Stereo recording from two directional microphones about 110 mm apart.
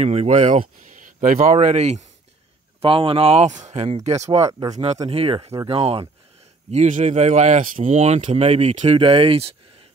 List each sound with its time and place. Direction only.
0.0 s speech: 75° right (ahead or behind)
1.4 s speech: 90° right
2.8 s speech: 55° right (ahead or behind); by 4.5 s 85° right
4.5 s speech: 35° right (ahead or behind)
5.1 s speech: 60° right (ahead or behind)
6.7 s speech: 90° right; by 9.6 s 60° right (ahead or behind)